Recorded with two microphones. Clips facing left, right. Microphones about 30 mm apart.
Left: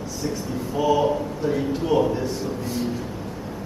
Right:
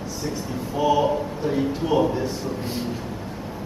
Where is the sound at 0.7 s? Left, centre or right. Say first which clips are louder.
Even; centre.